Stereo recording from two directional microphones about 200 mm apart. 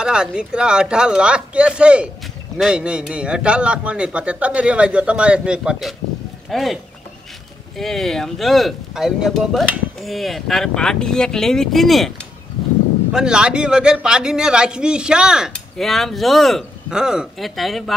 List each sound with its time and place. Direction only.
0.0 s a man's voice: 5° right (ahead or behind)
13.1 s a man's voice: 5° right (ahead or behind)